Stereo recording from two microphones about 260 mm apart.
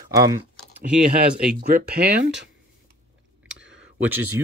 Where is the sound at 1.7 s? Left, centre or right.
Right.